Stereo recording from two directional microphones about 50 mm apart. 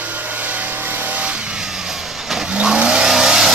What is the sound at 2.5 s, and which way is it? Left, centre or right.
Vehicle, centre.